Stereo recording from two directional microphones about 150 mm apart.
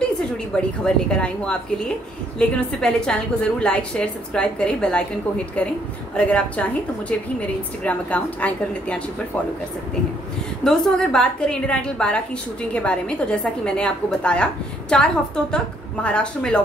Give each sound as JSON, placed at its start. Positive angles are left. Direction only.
{"t": 0.2, "sound": "a woman's voice", "side_deg": 5}
{"t": 6.1, "sound": "a woman's voice", "side_deg": 10}
{"t": 10.6, "sound": "a woman's voice", "side_deg": 5}